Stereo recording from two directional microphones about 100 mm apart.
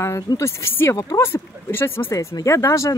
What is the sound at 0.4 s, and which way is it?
Speech, 25° left (ahead or behind).